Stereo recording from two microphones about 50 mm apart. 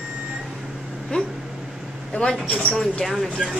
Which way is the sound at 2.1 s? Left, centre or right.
Left.